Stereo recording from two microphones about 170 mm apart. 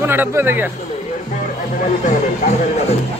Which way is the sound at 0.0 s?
15° right (ahead or behind).